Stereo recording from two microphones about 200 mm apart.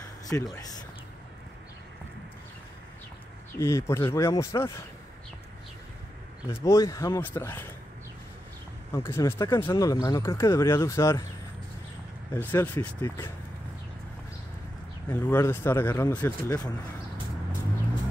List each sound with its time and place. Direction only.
0.3 s speech: 20° left (ahead or behind)
3.5 s speech: 15° left (ahead or behind)
6.6 s speech: 15° left (ahead or behind)
8.9 s speech: 15° left (ahead or behind)
12.4 s speech: 10° left (ahead or behind)
15.0 s speech: 10° left (ahead or behind)